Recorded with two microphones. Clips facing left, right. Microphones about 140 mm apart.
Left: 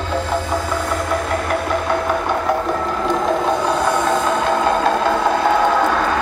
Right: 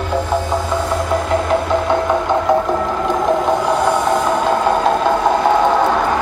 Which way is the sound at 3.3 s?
15° right (ahead or behind).